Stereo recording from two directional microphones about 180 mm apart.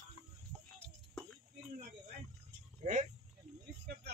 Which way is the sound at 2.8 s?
40° right (ahead or behind).